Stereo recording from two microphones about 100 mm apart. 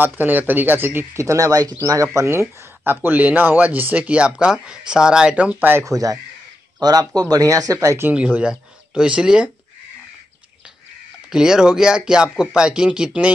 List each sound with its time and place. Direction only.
0.0 s speech: 20° right (ahead or behind)
5.9 s speech: 35° right (ahead or behind)
8.1 s speech: 10° right (ahead or behind)
11.2 s speech: 5° right (ahead or behind)